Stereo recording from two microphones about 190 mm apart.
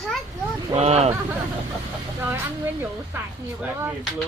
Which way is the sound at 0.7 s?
35° right (ahead or behind).